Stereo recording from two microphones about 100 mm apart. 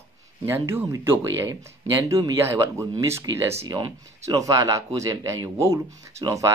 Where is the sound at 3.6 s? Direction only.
45° right (ahead or behind).